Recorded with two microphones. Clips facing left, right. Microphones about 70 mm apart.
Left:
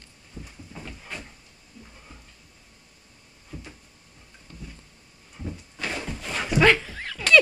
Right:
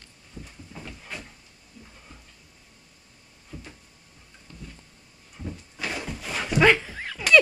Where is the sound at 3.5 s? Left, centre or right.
Centre.